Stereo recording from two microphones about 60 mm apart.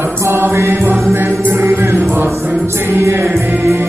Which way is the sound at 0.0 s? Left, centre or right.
Right.